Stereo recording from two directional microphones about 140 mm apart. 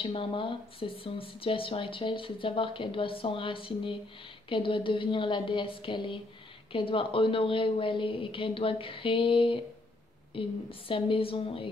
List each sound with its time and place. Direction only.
0.0 s speech: 40° left (ahead or behind)